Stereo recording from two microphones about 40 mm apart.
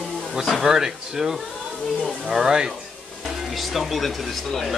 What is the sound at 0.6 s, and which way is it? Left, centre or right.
Speech, centre.